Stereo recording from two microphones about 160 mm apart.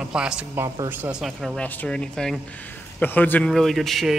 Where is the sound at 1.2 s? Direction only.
Centre (ahead or behind).